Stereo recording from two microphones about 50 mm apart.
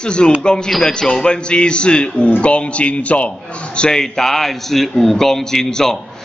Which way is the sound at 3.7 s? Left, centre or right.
Centre.